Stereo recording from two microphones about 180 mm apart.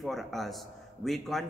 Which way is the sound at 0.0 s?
Centre (ahead or behind).